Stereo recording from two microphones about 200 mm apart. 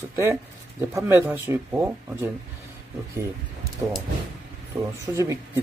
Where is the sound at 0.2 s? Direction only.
15° right (ahead or behind).